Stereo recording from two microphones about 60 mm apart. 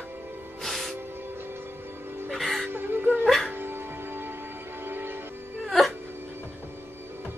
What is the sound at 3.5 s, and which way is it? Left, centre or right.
Music, right.